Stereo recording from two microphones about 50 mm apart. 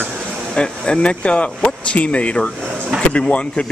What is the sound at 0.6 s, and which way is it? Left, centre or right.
Speech, centre.